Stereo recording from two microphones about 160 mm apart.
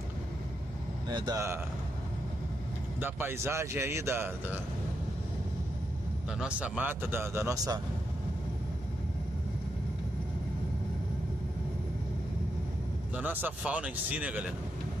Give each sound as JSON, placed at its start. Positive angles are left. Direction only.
{"t": 1.0, "sound": "speech", "side_deg": -25}
{"t": 3.0, "sound": "speech", "side_deg": -15}
{"t": 6.3, "sound": "speech", "side_deg": -5}
{"t": 13.1, "sound": "speech", "side_deg": -10}